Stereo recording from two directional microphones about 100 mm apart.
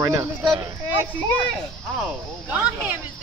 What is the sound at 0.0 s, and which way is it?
Speech, 35° right (ahead or behind).